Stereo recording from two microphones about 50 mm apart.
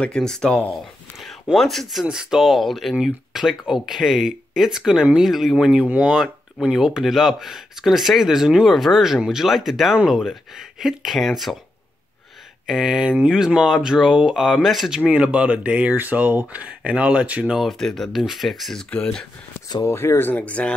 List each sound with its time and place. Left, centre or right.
0.2 s speech: centre
2.0 s speech: centre
5.7 s speech: right
6.1 s speech: centre
12.6 s speech: centre
13.9 s speech: centre
15.0 s speech: centre
16.0 s speech: right
17.7 s speech: centre
18.1 s speech: centre
19.8 s speech: left
20.3 s speech: left